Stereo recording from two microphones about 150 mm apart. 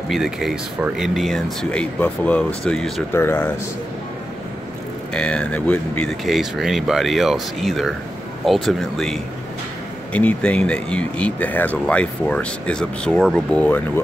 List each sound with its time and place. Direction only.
0.1 s speech: centre (ahead or behind)
3.1 s speech: 15° left (ahead or behind)
5.1 s speech: 5° left (ahead or behind)